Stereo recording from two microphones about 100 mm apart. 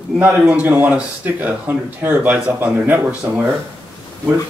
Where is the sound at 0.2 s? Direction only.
15° right (ahead or behind).